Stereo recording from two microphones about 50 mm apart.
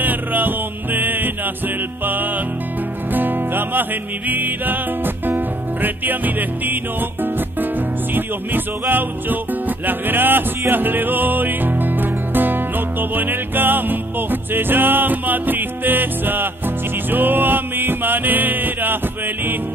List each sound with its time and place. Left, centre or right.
0.0 s music: right